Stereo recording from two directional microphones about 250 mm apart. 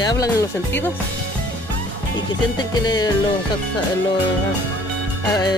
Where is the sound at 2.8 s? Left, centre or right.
Centre.